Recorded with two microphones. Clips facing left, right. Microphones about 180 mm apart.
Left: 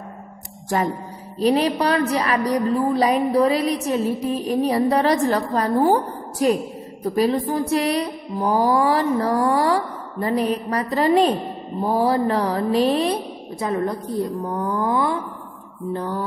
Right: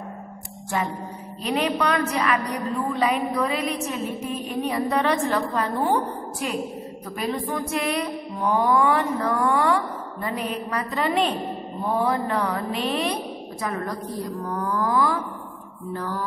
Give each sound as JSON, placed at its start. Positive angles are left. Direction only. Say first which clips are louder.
{"t": 1.4, "sound": "a woman's voice", "louder": "left 5 dB", "side_deg": 35}